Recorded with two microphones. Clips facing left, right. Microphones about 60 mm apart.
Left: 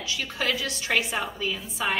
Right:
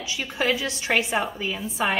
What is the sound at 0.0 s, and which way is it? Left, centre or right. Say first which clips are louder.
A woman's voice: right 3 dB; right.